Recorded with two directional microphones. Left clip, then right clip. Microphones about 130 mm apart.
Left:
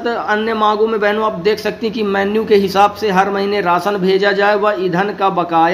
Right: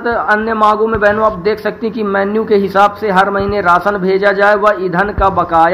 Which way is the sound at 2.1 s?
20° left (ahead or behind).